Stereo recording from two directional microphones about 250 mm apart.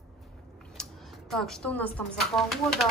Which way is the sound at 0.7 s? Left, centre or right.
Centre.